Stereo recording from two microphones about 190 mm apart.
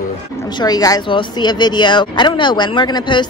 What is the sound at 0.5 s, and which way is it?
Speech, 20° left (ahead or behind).